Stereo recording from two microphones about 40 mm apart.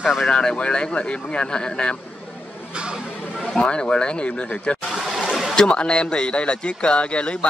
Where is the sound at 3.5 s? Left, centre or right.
Left.